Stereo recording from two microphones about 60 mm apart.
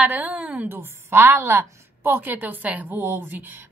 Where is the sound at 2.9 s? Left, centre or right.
Right.